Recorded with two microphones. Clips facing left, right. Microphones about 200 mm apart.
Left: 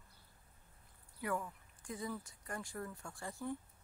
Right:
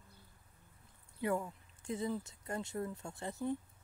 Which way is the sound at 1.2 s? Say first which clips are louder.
Right 4 dB; 25° right (ahead or behind).